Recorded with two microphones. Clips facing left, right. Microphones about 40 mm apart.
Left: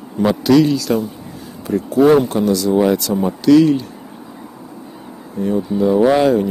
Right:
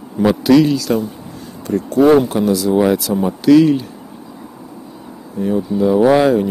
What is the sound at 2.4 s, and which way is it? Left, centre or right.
Speech, centre.